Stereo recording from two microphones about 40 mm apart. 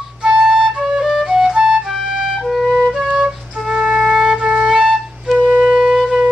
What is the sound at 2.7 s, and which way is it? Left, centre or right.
Flute, left.